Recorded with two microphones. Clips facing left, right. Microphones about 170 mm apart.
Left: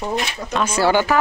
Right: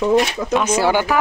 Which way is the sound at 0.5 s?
15° right (ahead or behind).